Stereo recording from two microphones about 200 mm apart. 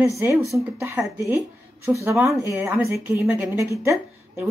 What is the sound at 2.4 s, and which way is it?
A woman's voice, 15° right (ahead or behind).